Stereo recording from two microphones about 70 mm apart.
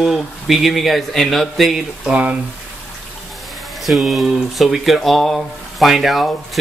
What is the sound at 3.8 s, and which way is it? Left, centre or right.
Speech, centre.